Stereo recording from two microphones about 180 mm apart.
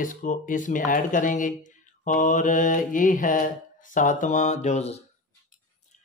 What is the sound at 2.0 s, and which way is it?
Mantra, 45° left (ahead or behind).